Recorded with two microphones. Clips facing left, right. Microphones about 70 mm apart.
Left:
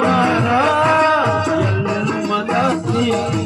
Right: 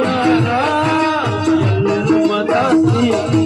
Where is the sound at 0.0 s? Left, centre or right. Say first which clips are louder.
Right 1 dB; centre.